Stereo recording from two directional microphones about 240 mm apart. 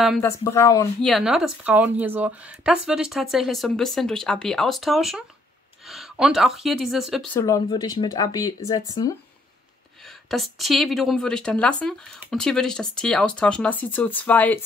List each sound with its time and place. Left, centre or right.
0.0 s speech: centre
0.4 s speech: centre
1.0 s speech: centre
7.3 s speech: centre
10.0 s speech: centre